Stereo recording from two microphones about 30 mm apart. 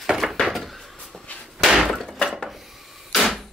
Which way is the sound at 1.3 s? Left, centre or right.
Left.